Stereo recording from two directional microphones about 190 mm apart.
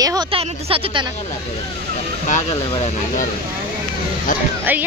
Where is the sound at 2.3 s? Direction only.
40° left (ahead or behind).